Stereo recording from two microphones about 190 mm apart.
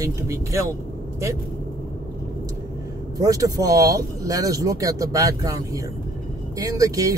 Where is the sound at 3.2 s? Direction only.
15° right (ahead or behind).